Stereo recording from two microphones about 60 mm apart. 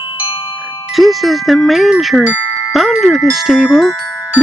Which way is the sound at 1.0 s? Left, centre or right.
Centre.